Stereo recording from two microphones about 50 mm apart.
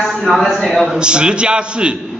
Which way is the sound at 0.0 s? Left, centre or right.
Centre.